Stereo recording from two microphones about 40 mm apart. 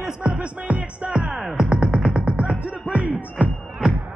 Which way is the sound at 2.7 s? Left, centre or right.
Right.